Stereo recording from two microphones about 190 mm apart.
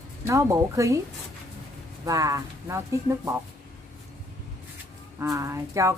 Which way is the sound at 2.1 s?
15° right (ahead or behind).